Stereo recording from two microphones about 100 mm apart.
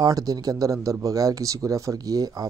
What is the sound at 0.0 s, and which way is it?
Speech, 35° right (ahead or behind).